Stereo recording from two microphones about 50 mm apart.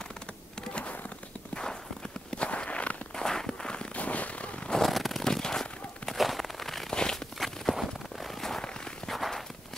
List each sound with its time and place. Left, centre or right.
1.5 s walk: centre
2.3 s walk: left
3.2 s walk: centre
3.9 s fireworks: left
4.8 s a sound: centre
6.9 s a sound: centre
7.3 s walk: centre